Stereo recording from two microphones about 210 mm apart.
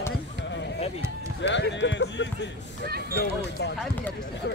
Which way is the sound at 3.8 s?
10° left (ahead or behind).